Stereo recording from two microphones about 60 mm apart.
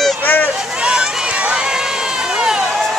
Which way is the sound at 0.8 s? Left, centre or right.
Centre.